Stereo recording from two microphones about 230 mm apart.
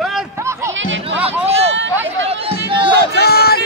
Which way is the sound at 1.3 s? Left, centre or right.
Right.